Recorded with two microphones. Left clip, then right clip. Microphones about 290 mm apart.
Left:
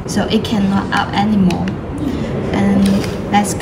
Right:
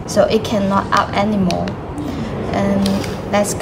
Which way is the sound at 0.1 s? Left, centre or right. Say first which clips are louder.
Right 4 dB; right.